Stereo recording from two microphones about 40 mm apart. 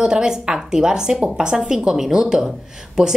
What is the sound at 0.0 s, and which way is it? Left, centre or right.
A woman's voice, centre.